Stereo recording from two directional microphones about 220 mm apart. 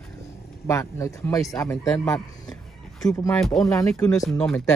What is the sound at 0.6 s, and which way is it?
Speech, 10° left (ahead or behind).